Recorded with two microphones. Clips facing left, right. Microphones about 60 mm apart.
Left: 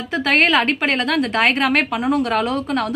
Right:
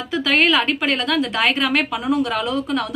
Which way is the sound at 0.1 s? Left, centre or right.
Left.